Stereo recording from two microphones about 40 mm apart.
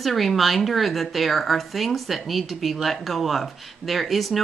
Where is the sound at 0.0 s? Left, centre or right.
Centre.